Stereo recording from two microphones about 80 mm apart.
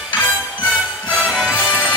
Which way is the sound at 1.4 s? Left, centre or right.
Centre.